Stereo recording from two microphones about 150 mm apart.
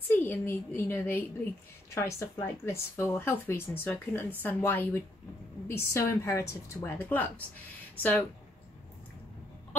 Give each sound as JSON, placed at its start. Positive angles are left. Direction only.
{"t": 0.1, "sound": "speech", "side_deg": 15}